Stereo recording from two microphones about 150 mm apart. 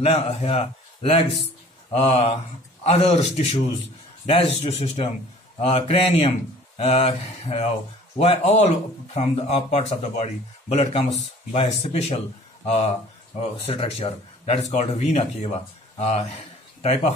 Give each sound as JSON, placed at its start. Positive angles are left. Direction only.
{"t": 0.0, "sound": "speech", "side_deg": 45}
{"t": 13.7, "sound": "speech", "side_deg": 40}